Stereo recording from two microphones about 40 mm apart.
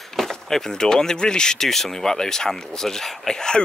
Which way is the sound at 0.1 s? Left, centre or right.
Centre.